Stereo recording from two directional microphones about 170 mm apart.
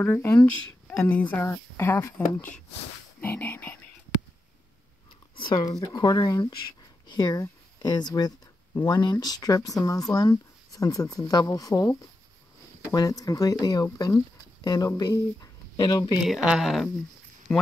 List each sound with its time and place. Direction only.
0.0 s speech: 10° left (ahead or behind)
5.4 s speech: 25° left (ahead or behind)
16.3 s speech: centre (ahead or behind)